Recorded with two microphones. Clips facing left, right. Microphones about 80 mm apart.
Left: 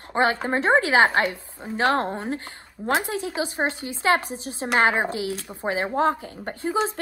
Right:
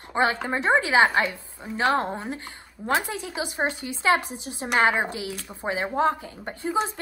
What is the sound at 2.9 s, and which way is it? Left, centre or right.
A woman's voice, left.